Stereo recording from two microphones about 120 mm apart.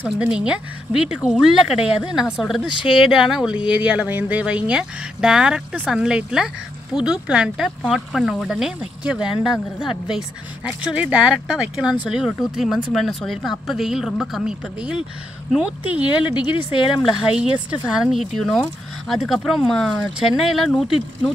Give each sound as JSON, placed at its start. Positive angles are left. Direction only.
{"t": 0.2, "sound": "speech", "side_deg": -10}
{"t": 2.7, "sound": "speech", "side_deg": 45}
{"t": 3.0, "sound": "speech", "side_deg": -5}
{"t": 16.7, "sound": "speech", "side_deg": 45}
{"t": 17.1, "sound": "speech", "side_deg": -10}